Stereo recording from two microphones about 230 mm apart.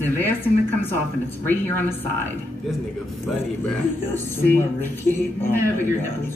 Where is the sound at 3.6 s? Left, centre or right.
Centre.